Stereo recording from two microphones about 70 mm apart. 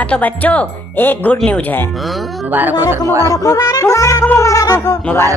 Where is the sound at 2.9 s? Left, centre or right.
Right.